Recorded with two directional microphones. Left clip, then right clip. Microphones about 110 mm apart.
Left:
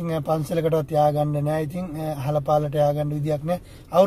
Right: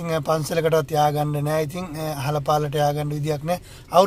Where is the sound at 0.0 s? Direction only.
15° right (ahead or behind).